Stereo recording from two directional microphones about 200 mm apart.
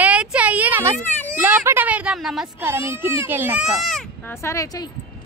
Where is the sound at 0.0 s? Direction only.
5° right (ahead or behind).